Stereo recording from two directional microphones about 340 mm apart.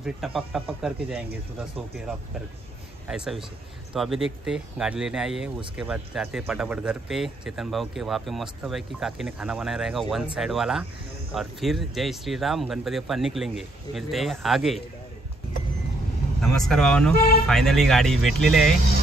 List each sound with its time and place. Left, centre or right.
0.0 s speech: centre
3.1 s speech: centre
16.3 s speech: centre